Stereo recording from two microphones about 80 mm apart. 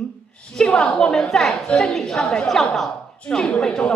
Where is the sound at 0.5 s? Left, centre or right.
Centre.